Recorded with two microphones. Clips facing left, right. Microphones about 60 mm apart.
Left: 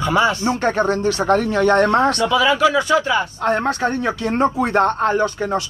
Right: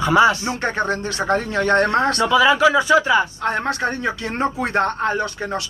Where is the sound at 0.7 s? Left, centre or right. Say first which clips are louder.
Left 4 dB; right.